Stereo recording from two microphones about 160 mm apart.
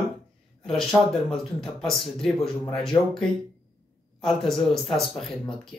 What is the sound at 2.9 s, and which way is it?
Speech, 20° left (ahead or behind).